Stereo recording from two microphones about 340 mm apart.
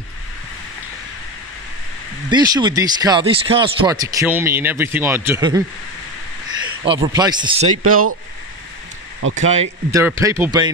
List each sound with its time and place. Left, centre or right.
2.2 s speech: centre
6.8 s speech: centre
7.7 s speech: right
9.2 s speech: right
9.8 s speech: centre